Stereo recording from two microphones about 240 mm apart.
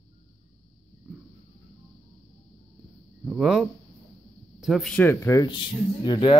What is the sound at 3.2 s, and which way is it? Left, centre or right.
Speech, centre.